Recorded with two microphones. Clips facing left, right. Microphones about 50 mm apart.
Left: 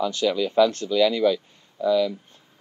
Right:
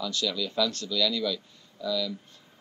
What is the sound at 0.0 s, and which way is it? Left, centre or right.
Speech, left.